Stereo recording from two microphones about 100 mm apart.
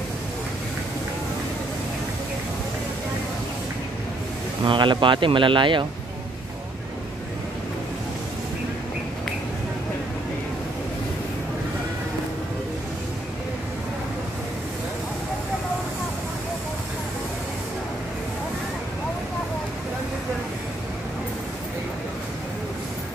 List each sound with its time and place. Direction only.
4.6 s speech: 55° right (ahead or behind)